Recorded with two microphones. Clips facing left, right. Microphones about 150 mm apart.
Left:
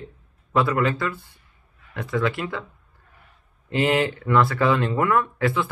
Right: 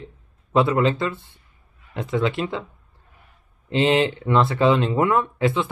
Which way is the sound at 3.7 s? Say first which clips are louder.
Right 2 dB; 25° right (ahead or behind).